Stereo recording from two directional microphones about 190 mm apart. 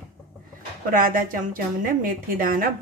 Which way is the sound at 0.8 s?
45° right (ahead or behind).